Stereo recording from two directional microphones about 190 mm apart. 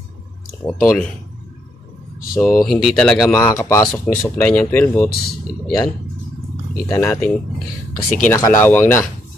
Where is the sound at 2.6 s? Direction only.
Centre (ahead or behind).